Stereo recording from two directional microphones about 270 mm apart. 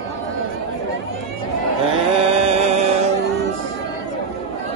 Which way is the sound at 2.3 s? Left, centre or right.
Right.